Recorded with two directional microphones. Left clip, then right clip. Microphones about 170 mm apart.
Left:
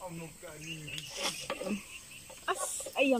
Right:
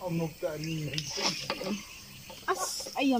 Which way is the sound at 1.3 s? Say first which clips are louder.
Right 4 dB; centre (ahead or behind).